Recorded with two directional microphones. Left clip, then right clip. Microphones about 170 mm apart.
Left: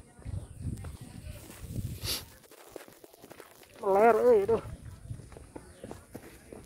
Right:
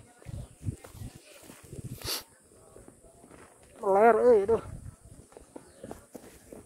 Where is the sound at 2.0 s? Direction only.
55° right (ahead or behind).